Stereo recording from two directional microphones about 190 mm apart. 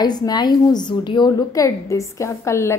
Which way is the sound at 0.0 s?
20° left (ahead or behind).